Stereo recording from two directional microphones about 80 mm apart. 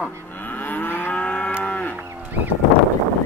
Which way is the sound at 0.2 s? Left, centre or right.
Left.